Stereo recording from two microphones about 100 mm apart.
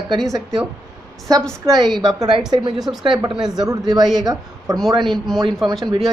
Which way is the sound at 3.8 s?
40° right (ahead or behind).